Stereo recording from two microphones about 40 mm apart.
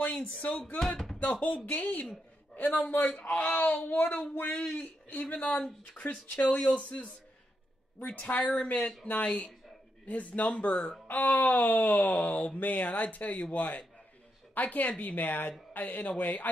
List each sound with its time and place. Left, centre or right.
0.4 s a man's voice: left
2.9 s speech: left
3.3 s speech: left
3.9 s speech: left
6.0 s speech: left
6.4 s speech: left
8.0 s speech: left